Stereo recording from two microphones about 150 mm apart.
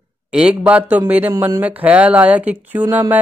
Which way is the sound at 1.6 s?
10° right (ahead or behind).